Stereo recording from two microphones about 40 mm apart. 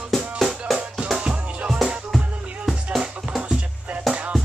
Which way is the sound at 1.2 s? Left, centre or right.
Right.